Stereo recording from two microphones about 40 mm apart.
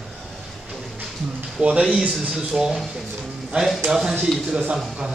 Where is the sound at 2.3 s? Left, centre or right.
Centre.